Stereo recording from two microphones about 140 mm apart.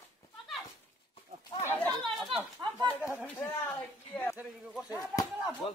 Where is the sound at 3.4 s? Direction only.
20° left (ahead or behind).